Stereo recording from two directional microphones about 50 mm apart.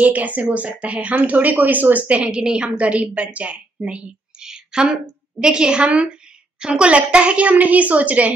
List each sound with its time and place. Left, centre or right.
0.0 s a woman's voice: right